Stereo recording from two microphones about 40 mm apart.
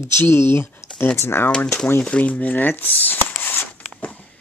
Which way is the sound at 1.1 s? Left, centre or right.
Left.